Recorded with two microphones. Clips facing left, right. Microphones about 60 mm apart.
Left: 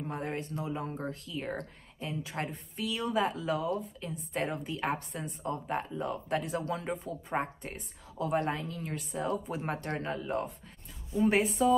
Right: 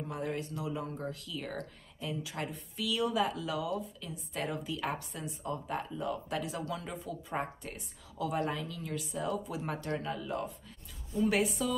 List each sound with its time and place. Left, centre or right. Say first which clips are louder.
0.0 s speech: left 1 dB; left